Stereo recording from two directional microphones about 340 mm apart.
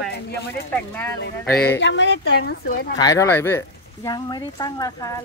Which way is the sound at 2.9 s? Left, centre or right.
Centre.